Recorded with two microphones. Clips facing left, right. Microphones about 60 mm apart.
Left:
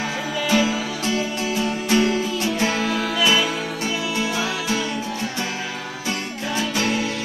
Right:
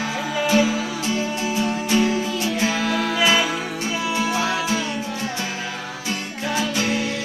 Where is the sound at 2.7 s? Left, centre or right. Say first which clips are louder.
Even; centre.